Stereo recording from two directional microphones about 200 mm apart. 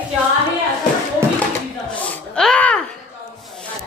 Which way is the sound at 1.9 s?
5° left (ahead or behind).